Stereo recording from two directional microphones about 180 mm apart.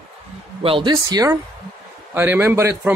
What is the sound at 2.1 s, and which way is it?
Speech, 10° right (ahead or behind).